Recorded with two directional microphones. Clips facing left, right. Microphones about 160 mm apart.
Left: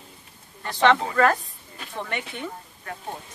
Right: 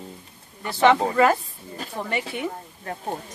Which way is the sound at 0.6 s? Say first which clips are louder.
Right 2 dB; 10° right (ahead or behind).